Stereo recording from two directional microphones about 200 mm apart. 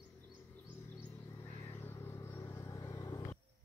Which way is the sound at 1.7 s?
10° left (ahead or behind).